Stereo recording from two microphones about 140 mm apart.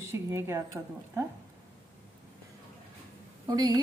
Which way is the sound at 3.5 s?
30° right (ahead or behind).